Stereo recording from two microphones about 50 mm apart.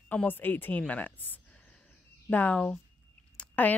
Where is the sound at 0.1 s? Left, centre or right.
Left.